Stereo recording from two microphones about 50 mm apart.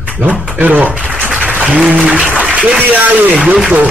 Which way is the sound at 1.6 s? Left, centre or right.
Centre.